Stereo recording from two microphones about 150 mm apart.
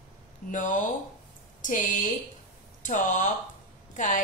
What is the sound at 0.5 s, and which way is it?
A woman's voice, 60° left (ahead or behind).